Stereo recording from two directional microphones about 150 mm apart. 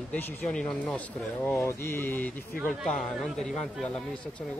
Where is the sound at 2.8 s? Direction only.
5° left (ahead or behind).